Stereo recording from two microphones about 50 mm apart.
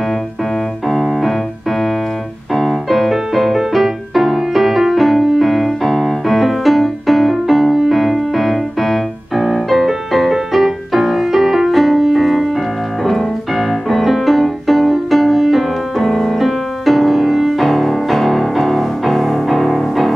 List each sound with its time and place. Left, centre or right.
0.8 s keyboard: centre
2.5 s music: centre